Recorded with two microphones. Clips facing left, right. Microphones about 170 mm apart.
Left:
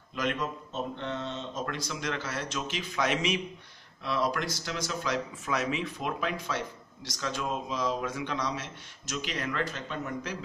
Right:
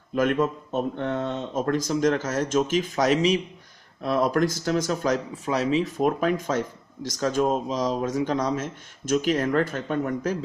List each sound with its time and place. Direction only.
0.1 s speech: 50° right (ahead or behind)
4.0 s speech: 45° right (ahead or behind)
5.9 s speech: 45° right (ahead or behind)